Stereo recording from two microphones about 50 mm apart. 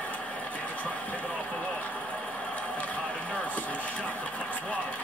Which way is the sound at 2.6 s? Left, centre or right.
Left.